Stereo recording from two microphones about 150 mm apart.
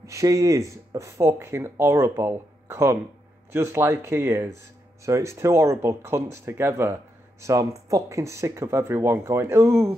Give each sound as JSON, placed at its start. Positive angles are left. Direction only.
{"t": 0.0, "sound": "speech", "side_deg": -20}